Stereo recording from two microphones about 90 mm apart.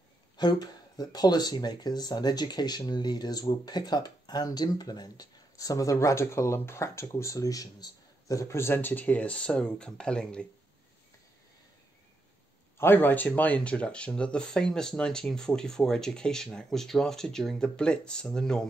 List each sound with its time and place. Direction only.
0.4 s speech: 50° left (ahead or behind); by 10.4 s 10° left (ahead or behind)
12.7 s speech: 25° left (ahead or behind); by 18.7 s 5° left (ahead or behind)